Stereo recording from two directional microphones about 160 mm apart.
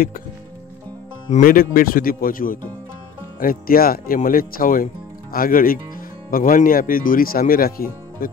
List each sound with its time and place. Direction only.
1.3 s speech: 60° left (ahead or behind)